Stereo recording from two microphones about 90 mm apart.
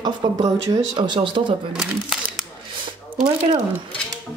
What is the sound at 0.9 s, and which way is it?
Speech, 60° right (ahead or behind).